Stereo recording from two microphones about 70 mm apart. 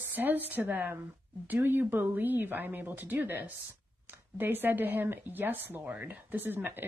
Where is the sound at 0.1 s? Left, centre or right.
Right.